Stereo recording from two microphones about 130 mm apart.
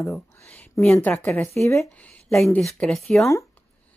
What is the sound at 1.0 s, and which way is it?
Speech, 15° left (ahead or behind).